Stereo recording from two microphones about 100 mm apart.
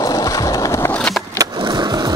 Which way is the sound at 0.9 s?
5° left (ahead or behind).